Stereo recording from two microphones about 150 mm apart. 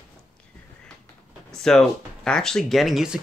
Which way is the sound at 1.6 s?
5° left (ahead or behind).